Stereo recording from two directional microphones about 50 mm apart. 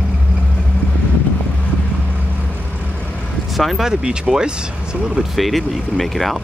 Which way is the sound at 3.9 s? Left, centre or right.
Centre.